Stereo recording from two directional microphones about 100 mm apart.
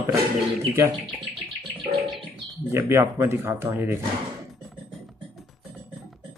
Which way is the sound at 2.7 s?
25° right (ahead or behind).